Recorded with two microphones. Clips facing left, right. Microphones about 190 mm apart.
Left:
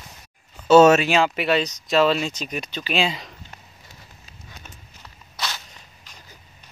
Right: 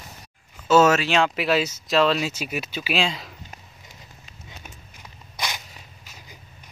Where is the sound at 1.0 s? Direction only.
5° left (ahead or behind).